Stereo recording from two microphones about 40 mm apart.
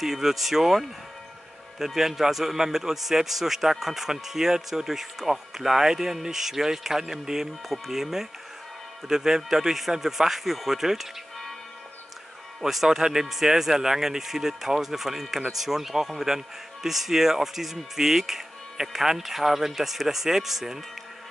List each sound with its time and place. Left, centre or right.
0.0 s a man's voice: centre
12.6 s a man's voice: centre